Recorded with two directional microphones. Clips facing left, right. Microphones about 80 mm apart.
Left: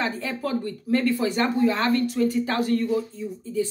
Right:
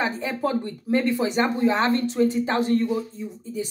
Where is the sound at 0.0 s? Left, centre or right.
Centre.